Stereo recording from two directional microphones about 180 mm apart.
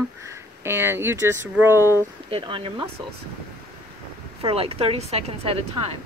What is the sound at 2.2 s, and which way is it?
Speech, 30° right (ahead or behind).